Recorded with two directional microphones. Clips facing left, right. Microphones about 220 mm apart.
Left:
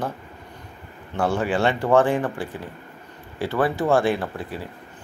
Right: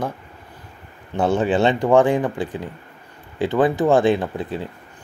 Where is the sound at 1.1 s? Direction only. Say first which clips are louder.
Right 4 dB; 20° right (ahead or behind).